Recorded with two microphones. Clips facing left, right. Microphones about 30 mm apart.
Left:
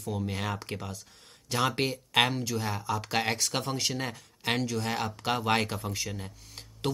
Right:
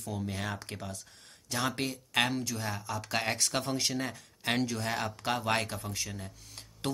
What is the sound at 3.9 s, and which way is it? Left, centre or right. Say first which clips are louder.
Speech: left 1 dB; centre.